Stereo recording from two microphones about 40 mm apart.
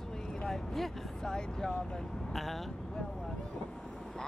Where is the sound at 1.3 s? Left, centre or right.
Centre.